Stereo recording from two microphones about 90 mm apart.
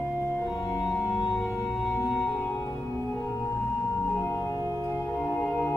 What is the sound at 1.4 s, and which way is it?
Music, centre (ahead or behind).